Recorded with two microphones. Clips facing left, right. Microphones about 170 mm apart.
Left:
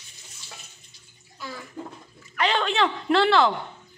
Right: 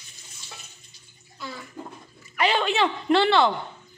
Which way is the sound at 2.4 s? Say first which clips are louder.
Right 1 dB; 5° right (ahead or behind).